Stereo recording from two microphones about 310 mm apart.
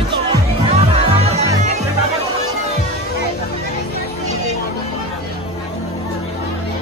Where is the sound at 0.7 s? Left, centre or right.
Centre.